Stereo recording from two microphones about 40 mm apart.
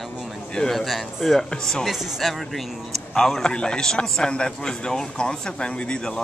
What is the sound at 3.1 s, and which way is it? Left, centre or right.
A man's voice, centre.